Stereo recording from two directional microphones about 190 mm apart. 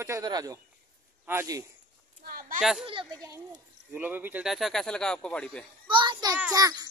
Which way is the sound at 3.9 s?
10° right (ahead or behind).